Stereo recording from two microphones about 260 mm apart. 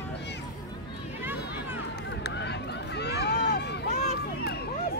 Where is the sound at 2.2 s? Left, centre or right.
Left.